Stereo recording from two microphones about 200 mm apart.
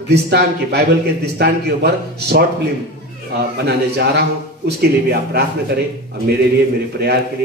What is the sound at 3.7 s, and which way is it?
A man's voice, 55° right (ahead or behind).